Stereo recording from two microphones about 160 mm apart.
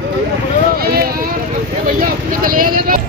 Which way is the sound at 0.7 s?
70° right (ahead or behind).